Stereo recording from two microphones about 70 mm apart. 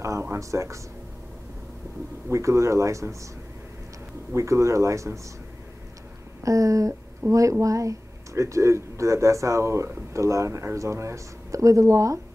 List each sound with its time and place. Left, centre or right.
0.0 s a sound: right
2.2 s speech: right
4.3 s speech: right
6.4 s speech: right